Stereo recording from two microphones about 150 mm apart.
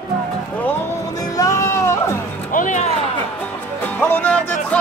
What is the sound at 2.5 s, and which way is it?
Music, 60° left (ahead or behind).